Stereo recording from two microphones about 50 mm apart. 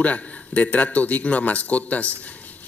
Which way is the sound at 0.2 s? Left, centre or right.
Left.